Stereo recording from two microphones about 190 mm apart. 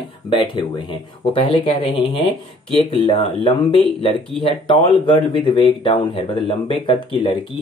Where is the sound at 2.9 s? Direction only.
30° left (ahead or behind).